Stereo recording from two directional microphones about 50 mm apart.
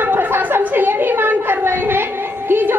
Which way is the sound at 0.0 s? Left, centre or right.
Right.